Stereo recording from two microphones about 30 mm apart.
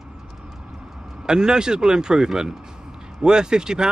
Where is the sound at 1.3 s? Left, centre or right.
Right.